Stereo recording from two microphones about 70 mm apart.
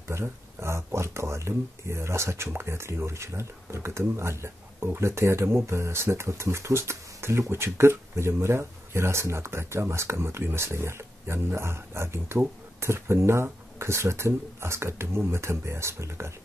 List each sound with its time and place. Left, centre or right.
0.1 s speech: right